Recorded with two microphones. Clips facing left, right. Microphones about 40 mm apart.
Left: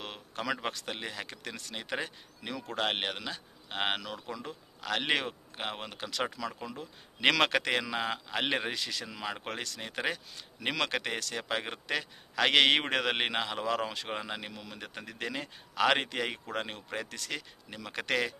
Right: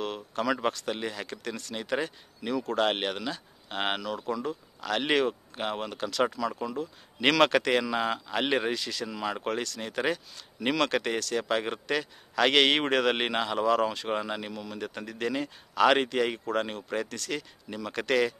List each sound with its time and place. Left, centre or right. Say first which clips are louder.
0.0 s a sound: right 7 dB; centre
0.7 s speech: right 5 dB; centre
14.5 s speech: right 7 dB; centre